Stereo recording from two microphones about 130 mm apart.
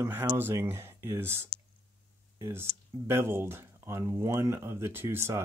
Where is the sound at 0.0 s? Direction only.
20° right (ahead or behind).